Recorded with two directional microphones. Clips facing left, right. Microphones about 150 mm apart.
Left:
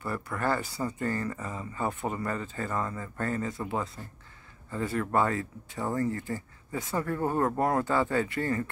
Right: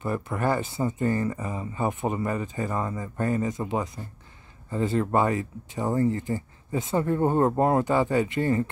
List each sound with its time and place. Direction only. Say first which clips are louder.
0.0 s speech: right 4 dB; 20° right (ahead or behind)